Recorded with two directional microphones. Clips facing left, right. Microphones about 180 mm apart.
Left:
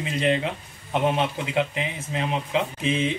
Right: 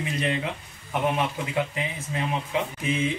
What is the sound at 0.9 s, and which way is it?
Speech, 20° left (ahead or behind).